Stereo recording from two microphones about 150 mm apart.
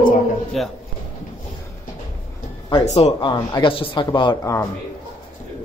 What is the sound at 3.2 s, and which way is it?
Speech, 30° left (ahead or behind).